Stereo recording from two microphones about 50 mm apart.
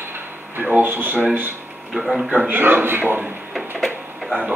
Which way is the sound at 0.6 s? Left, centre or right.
Right.